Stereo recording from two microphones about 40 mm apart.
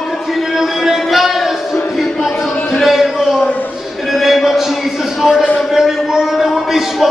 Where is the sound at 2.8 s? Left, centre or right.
Centre.